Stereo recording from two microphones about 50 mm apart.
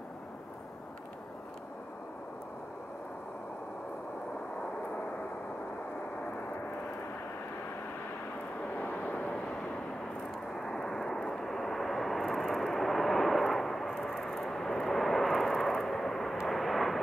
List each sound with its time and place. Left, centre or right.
8.7 s vehicle: left
10.6 s vehicle: centre
16.4 s aircraft: centre